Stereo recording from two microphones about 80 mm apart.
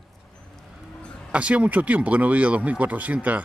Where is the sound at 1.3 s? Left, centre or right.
Centre.